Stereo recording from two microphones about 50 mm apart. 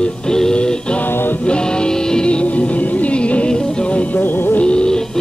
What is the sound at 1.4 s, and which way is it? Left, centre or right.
Music, centre.